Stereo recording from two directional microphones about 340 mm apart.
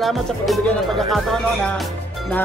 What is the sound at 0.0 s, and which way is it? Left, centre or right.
Speech, centre.